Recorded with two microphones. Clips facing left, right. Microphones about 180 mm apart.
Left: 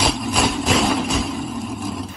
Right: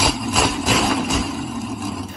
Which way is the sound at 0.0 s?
5° right (ahead or behind).